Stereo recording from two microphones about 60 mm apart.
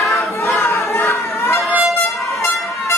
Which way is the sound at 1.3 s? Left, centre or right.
Left.